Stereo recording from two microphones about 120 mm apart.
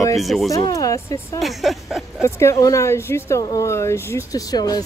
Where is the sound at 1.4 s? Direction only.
Centre (ahead or behind).